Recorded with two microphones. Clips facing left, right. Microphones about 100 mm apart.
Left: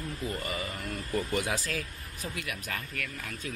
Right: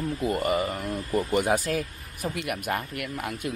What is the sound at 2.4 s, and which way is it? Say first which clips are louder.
Speech: right 11 dB; 55° right (ahead or behind).